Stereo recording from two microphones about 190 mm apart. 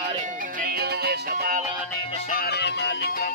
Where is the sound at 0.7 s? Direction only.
55° right (ahead or behind).